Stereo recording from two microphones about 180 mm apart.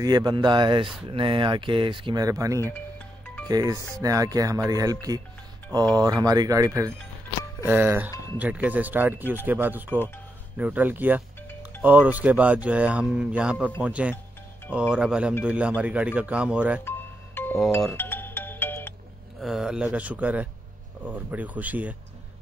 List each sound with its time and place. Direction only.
0.0 s speech: 25° right (ahead or behind)
5.9 s speech: 20° right (ahead or behind)
16.8 s music: 10° left (ahead or behind)
19.4 s speech: centre (ahead or behind)